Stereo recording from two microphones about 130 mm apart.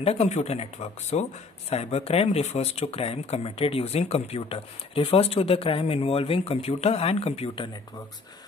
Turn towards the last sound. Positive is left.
turn(degrees=45)  # may be behind; listen again after turning